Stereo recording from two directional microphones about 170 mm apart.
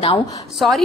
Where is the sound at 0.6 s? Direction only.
Centre (ahead or behind).